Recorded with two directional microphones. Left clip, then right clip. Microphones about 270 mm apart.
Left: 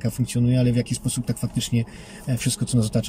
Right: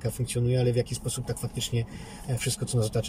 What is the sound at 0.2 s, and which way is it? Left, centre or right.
Speech, centre.